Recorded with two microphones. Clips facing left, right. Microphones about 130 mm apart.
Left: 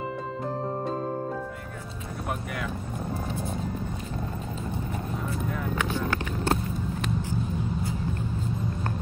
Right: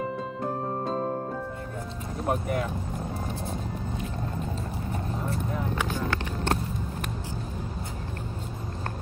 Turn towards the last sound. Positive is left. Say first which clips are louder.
# left 4 dB
turn(degrees=5)  # may be behind; listen again after turning